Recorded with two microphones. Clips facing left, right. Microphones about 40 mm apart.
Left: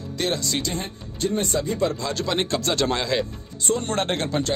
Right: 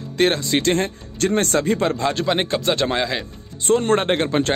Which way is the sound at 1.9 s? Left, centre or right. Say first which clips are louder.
Right 5 dB; right.